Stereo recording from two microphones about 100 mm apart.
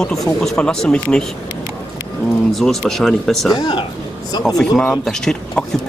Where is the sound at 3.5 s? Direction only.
45° left (ahead or behind).